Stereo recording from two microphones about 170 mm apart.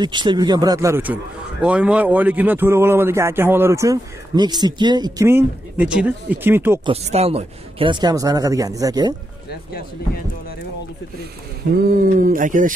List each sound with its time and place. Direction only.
0.0 s speech: 25° right (ahead or behind)
6.9 s speech: 35° right (ahead or behind); by 9.1 s 20° right (ahead or behind)
9.5 s speech: 60° left (ahead or behind)
11.7 s a sound: 55° right (ahead or behind)